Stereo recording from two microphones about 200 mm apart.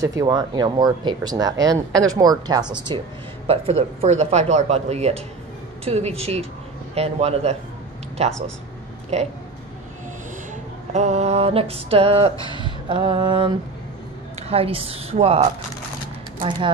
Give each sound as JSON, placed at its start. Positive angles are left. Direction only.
{"t": 0.0, "sound": "speech", "side_deg": -15}
{"t": 10.9, "sound": "speech", "side_deg": -35}
{"t": 14.5, "sound": "speech", "side_deg": -30}